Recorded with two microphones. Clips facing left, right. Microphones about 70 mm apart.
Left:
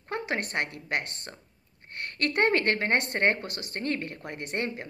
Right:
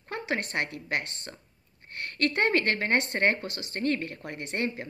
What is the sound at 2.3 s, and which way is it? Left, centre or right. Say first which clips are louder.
A woman's voice: left 3 dB; left.